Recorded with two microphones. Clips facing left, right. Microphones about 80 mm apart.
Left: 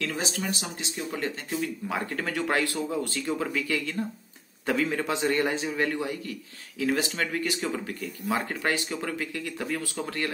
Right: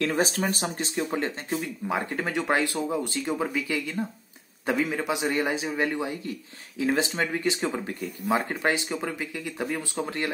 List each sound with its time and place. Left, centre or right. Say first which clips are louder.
0.0 s a man's voice: right 6 dB; right